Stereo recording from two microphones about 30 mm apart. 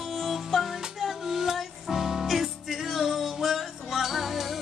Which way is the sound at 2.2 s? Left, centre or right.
Centre.